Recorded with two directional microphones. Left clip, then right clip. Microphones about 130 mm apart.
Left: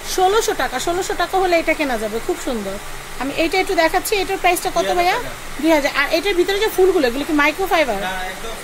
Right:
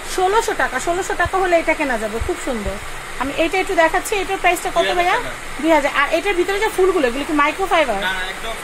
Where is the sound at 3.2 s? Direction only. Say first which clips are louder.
Even; 20° left (ahead or behind).